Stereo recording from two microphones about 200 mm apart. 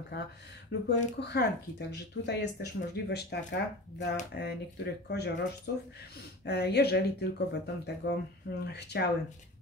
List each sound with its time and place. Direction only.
0.8 s speech: 55° left (ahead or behind)